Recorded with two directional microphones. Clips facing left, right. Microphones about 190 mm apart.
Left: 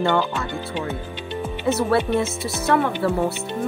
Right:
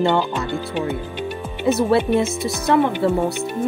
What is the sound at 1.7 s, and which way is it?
Speech, 20° right (ahead or behind).